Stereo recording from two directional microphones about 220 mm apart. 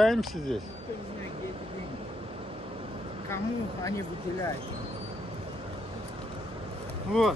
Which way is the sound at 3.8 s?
15° left (ahead or behind).